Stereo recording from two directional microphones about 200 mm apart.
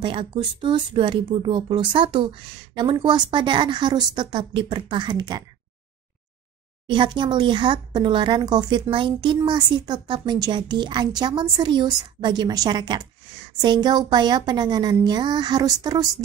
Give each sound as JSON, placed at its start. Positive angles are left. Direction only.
{"t": 0.0, "sound": "speech", "side_deg": -25}
{"t": 6.9, "sound": "speech", "side_deg": -25}